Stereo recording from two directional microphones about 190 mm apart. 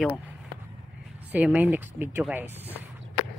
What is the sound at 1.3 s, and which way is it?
Speech, 10° right (ahead or behind).